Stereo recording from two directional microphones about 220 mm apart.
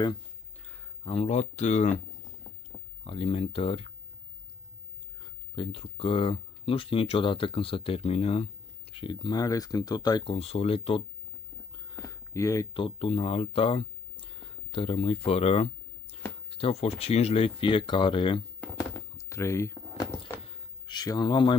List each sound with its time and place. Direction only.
1.0 s speech: 30° left (ahead or behind)
3.0 s speech: 25° left (ahead or behind)
5.2 s speech: 25° left (ahead or behind)
11.7 s a sound: 15° left (ahead or behind)
16.4 s speech: 25° left (ahead or behind)
18.6 s a sound: 15° left (ahead or behind)